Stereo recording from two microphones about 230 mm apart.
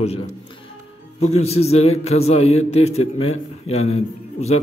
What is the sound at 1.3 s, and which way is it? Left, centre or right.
A man's voice, left.